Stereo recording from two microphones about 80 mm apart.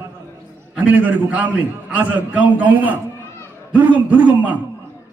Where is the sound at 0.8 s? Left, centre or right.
Right.